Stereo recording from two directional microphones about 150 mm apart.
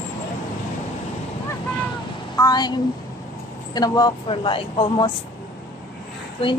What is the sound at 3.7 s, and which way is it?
Speech, 25° left (ahead or behind).